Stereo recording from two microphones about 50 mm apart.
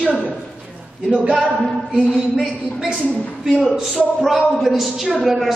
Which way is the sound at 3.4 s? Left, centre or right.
Centre.